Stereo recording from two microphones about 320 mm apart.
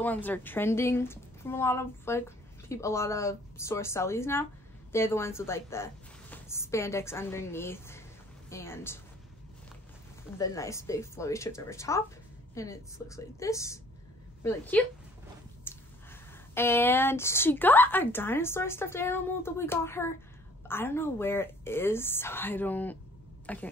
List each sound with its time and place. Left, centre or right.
0.0 s a woman's voice: centre
10.3 s a woman's voice: centre